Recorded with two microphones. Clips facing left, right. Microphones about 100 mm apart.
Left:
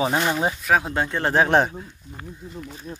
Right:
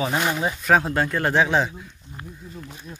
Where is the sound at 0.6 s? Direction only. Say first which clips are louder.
Right 5 dB; centre (ahead or behind).